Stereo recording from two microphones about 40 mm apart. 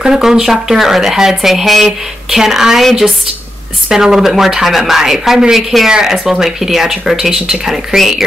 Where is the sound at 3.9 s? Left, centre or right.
Centre.